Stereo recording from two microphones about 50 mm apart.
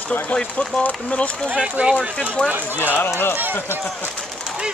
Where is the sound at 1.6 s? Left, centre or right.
Right.